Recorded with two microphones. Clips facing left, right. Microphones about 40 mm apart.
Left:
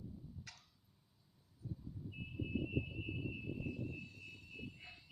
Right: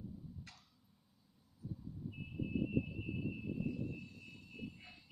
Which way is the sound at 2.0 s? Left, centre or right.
Centre.